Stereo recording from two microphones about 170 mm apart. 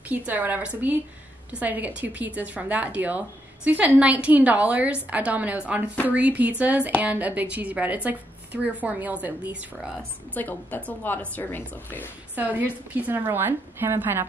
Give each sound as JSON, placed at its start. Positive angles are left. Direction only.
{"t": 0.3, "sound": "speech", "side_deg": -10}
{"t": 10.3, "sound": "a woman's voice", "side_deg": 10}
{"t": 12.4, "sound": "speech", "side_deg": -10}